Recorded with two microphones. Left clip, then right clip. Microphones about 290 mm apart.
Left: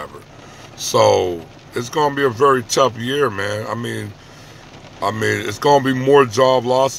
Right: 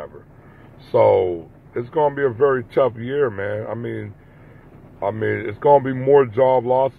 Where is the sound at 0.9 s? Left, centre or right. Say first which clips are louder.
Left 1 dB; centre.